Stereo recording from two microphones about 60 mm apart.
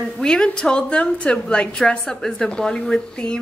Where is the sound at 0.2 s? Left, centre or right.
Centre.